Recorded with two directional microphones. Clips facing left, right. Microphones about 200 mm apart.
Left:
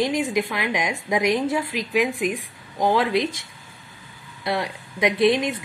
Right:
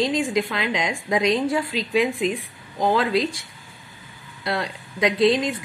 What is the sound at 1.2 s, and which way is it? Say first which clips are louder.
Speech: right 1 dB; 25° right (ahead or behind).